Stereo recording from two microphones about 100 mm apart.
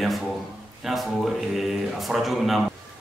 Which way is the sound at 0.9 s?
Centre (ahead or behind).